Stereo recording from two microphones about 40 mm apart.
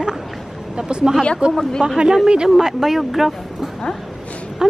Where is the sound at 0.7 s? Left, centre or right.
Right.